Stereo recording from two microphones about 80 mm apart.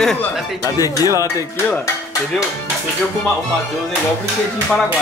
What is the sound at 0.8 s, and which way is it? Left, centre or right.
Speech, left.